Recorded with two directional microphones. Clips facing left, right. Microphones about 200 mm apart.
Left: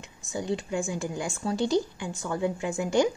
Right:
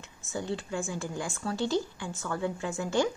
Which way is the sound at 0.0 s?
15° left (ahead or behind).